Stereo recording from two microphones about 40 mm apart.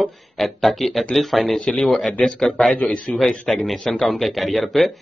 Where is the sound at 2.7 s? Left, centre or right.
Left.